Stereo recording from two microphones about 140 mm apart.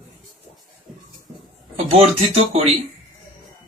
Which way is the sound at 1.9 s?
50° right (ahead or behind).